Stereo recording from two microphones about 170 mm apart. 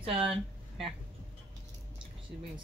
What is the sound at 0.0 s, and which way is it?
Speech, 30° right (ahead or behind).